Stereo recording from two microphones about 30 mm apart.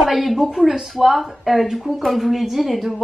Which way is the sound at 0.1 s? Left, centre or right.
Centre.